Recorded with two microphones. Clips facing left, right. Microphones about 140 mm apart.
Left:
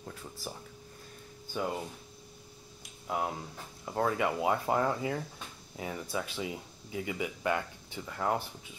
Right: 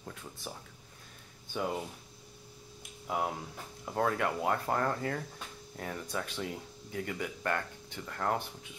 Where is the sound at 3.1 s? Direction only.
Centre (ahead or behind).